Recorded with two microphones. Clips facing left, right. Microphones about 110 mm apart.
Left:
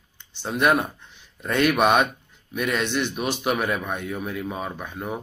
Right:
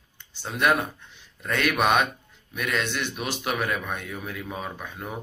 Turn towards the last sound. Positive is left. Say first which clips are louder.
# left 4 dB
turn(degrees=20)  # may be behind; listen again after turning